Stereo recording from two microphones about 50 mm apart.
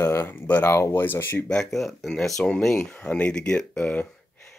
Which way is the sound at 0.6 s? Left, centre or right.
Left.